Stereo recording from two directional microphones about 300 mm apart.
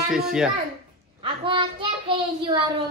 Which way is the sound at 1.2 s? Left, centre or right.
Centre.